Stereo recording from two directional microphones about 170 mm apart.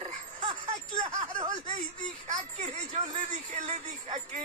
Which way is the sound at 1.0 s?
25° right (ahead or behind).